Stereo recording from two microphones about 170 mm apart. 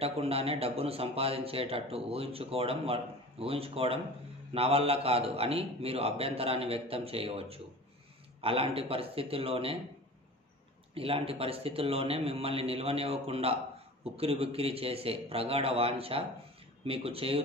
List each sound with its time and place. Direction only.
0.0 s a man's voice: 35° right (ahead or behind)
11.0 s a man's voice: 35° right (ahead or behind)